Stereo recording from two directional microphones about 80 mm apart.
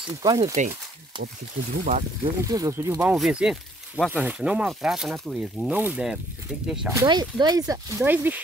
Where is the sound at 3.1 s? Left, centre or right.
Centre.